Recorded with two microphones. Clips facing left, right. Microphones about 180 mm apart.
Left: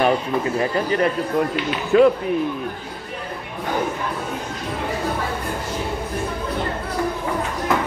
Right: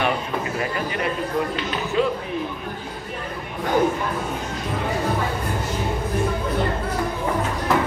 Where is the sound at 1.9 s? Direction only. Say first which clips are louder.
Left 9 dB; 60° left (ahead or behind).